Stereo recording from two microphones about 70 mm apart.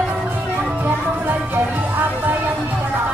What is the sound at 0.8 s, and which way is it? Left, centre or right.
Music, right.